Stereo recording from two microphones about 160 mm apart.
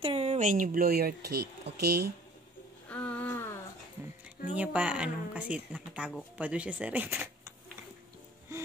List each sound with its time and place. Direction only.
0.0 s speech: 40° right (ahead or behind); by 1.1 s 70° right (ahead or behind)
1.3 s speech: 90° right
2.9 s a sound: 10° left (ahead or behind)
4.6 s speech: 10° right (ahead or behind)